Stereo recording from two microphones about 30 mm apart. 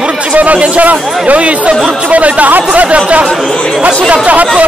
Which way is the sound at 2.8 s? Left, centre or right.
Right.